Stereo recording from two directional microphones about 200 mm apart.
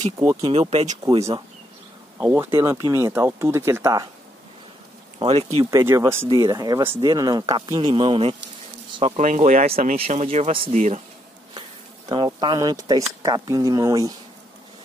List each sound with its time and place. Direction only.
0.2 s speech: 10° right (ahead or behind)
0.5 s speech: 30° right (ahead or behind)
2.1 s speech: 10° right (ahead or behind)
5.2 s speech: 30° right (ahead or behind)
5.7 s speech: 15° right (ahead or behind); by 11.0 s 35° right (ahead or behind)
12.1 s speech: 20° right (ahead or behind)